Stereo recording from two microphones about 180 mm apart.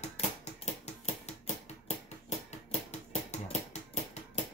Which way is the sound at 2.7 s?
40° left (ahead or behind).